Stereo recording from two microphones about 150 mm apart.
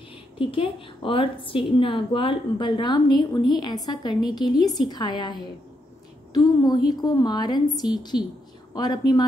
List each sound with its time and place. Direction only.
0.4 s a woman's voice: 35° left (ahead or behind)